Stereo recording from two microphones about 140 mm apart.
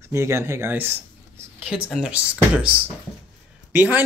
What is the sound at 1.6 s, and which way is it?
Speech, 5° right (ahead or behind).